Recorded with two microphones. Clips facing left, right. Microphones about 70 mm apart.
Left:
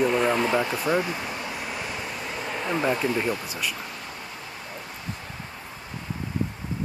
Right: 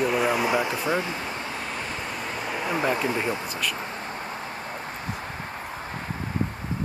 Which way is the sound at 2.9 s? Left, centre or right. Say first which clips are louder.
Even; centre.